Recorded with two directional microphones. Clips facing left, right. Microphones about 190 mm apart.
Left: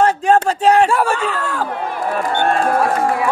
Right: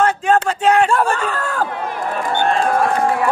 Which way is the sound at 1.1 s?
50° right (ahead or behind).